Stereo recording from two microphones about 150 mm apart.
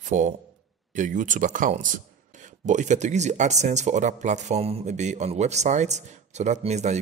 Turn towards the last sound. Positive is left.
turn(degrees=-50)  # may be behind; listen again after turning